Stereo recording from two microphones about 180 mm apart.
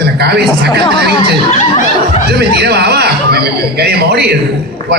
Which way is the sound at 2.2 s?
65° right (ahead or behind).